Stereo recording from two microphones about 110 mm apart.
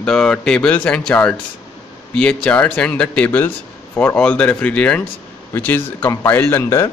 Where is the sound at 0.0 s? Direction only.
5° left (ahead or behind).